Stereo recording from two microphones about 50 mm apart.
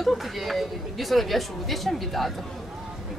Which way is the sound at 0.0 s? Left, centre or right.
Centre.